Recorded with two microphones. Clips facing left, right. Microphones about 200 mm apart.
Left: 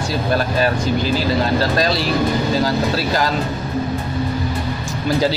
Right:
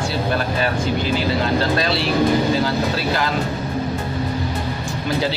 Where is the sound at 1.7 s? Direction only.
40° left (ahead or behind).